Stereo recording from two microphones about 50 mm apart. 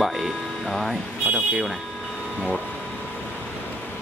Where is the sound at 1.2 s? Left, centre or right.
Right.